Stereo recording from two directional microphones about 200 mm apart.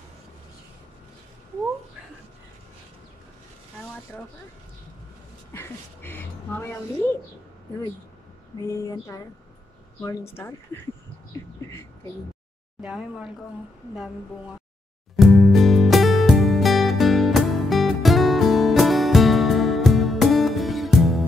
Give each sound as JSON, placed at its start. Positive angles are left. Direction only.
{"t": 5.5, "sound": "speech", "side_deg": 10}
{"t": 8.5, "sound": "speech", "side_deg": 15}
{"t": 12.8, "sound": "speech", "side_deg": -5}
{"t": 15.1, "sound": "music", "side_deg": 0}